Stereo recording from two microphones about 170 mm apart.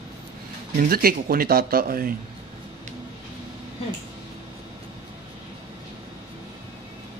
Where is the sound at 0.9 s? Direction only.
60° right (ahead or behind).